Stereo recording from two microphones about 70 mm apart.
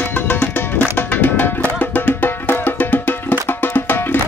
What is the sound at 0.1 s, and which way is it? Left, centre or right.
Music, left.